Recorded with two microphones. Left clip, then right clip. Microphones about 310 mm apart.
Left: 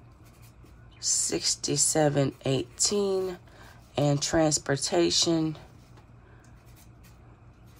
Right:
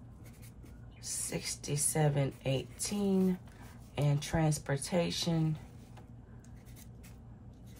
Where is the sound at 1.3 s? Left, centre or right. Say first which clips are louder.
Left 10 dB; left.